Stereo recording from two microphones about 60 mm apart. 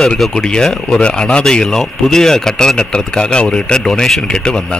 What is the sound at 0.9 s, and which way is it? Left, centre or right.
A man's voice, centre.